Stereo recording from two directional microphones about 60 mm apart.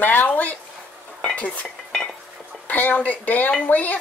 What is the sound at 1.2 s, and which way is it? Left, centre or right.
Stir, centre.